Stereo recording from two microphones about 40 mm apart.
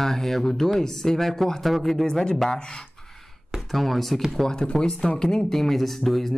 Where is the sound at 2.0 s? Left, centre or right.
Centre.